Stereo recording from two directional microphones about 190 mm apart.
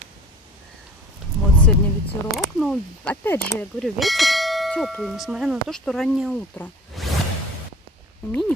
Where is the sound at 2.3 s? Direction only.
Centre (ahead or behind).